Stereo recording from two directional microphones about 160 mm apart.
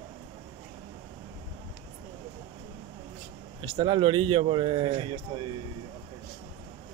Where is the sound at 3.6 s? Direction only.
30° right (ahead or behind).